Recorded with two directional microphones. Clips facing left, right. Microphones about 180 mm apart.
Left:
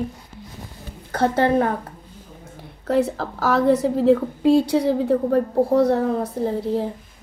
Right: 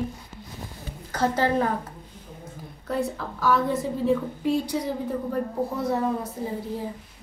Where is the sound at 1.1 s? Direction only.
60° left (ahead or behind).